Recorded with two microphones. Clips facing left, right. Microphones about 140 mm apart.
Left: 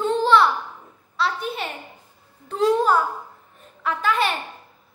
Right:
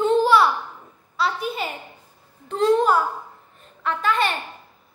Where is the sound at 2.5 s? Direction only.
10° left (ahead or behind).